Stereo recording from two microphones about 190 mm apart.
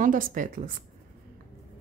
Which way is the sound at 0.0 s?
45° right (ahead or behind).